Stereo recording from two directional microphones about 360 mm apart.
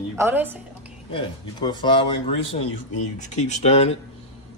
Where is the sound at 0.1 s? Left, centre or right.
Centre.